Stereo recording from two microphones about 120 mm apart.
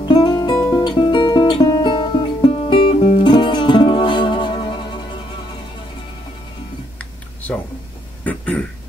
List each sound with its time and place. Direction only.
0.0 s music: 35° left (ahead or behind)
8.2 s throat clearing: 10° left (ahead or behind)